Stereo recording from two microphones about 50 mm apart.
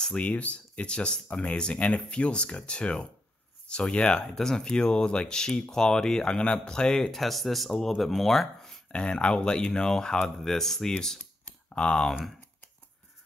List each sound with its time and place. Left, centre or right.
0.0 s speech: left; by 8.7 s centre
8.9 s speech: left
11.4 s typing: centre